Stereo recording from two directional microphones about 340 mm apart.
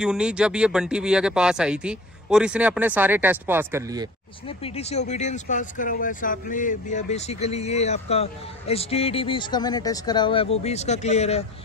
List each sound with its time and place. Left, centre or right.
0.0 s speech: centre
4.5 s speech: centre